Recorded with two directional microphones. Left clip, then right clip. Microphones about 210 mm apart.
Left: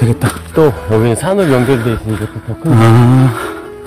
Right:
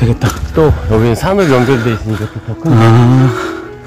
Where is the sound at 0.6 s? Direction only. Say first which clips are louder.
Even; 20° right (ahead or behind).